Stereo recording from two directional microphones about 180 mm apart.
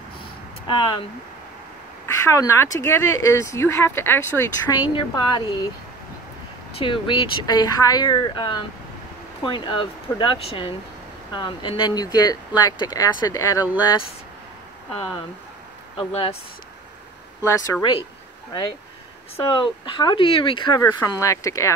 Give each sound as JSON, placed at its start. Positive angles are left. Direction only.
{"t": 0.7, "sound": "speech", "side_deg": 25}
{"t": 2.0, "sound": "speech", "side_deg": 15}
{"t": 4.9, "sound": "speech", "side_deg": 25}
{"t": 6.8, "sound": "speech", "side_deg": 30}
{"t": 16.0, "sound": "speech", "side_deg": 30}
{"t": 17.5, "sound": "speech", "side_deg": 15}